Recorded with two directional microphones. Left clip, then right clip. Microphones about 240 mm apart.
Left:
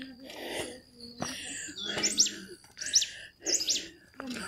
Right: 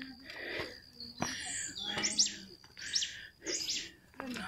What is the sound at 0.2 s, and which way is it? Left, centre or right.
Bicycle bell, centre.